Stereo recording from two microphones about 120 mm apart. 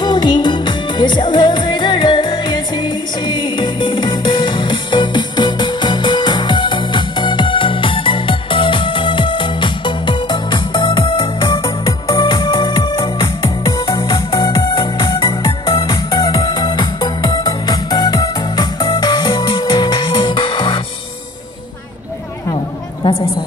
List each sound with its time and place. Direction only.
0.0 s music: 35° left (ahead or behind)